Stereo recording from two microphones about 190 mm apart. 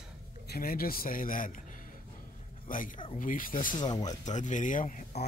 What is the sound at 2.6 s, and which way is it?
Speech, 45° left (ahead or behind).